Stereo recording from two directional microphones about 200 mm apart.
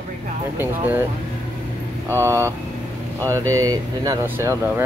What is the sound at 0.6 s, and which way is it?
Speech, 10° right (ahead or behind).